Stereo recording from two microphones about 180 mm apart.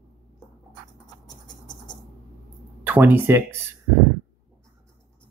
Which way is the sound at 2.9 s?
10° right (ahead or behind).